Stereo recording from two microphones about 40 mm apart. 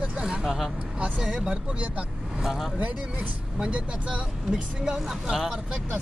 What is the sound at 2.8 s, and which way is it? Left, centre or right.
Speech, right.